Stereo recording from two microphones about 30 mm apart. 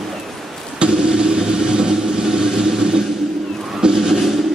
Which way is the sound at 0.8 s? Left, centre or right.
Right.